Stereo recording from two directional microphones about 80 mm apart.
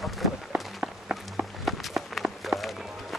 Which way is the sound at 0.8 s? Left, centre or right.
Centre.